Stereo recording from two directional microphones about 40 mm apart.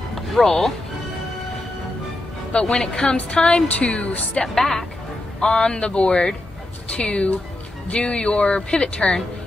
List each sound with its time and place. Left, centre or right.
0.1 s music: centre
2.6 s speech: centre
3.2 s speech: left
4.4 s speech: centre
5.7 s speech: left